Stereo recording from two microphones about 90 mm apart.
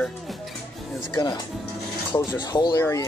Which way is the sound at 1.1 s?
55° left (ahead or behind).